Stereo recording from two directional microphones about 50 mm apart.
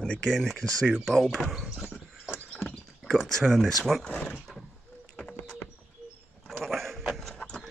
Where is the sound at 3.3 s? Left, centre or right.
Centre.